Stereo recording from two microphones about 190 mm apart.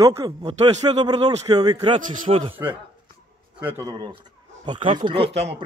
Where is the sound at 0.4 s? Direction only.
35° right (ahead or behind).